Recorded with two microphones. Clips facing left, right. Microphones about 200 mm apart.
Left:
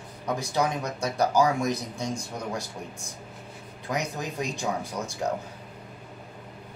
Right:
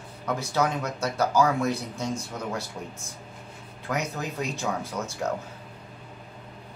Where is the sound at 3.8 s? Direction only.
15° left (ahead or behind).